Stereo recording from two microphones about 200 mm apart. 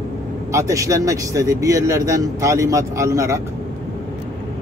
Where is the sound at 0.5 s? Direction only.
15° right (ahead or behind).